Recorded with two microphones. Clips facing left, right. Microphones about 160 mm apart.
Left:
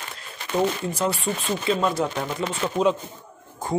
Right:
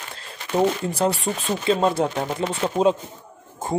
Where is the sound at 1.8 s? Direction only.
30° right (ahead or behind).